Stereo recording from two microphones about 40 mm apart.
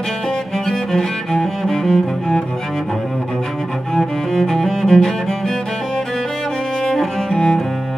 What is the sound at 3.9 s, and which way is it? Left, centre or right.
Music, centre.